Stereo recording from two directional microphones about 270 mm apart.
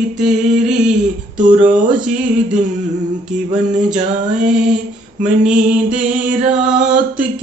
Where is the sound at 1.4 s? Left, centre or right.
Right.